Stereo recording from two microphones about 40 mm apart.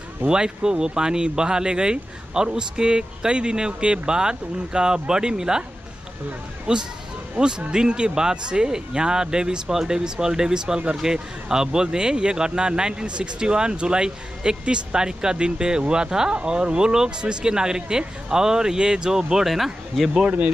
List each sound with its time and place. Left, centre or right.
0.3 s speech: centre
6.7 s speech: right; by 20.1 s centre
20.2 s speech: right